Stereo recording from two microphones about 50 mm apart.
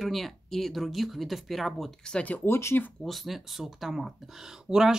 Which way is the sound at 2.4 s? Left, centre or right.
Left.